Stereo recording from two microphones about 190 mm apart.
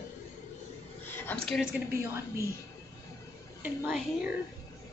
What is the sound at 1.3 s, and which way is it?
Speech, 10° left (ahead or behind).